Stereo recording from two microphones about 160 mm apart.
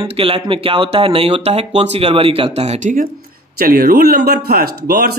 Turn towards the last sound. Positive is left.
turn(degrees=-80)